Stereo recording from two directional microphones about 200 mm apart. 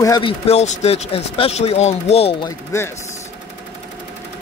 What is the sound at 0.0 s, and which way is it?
Speech, 20° left (ahead or behind).